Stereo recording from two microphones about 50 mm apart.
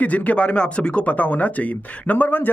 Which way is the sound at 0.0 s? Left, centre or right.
Left.